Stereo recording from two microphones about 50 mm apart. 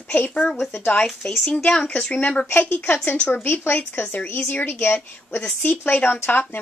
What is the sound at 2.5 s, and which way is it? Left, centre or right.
A woman's voice, left.